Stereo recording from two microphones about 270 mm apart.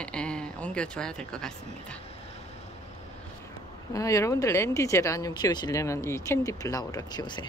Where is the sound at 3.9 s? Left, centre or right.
Centre.